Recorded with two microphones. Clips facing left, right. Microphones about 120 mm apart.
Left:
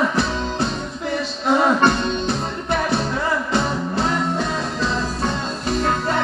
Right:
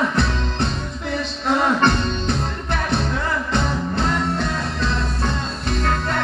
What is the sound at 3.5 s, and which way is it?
Music, 5° left (ahead or behind).